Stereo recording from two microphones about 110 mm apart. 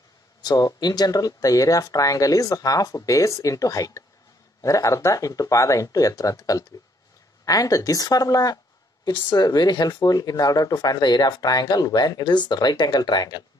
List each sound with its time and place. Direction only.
0.4 s speech: 35° left (ahead or behind)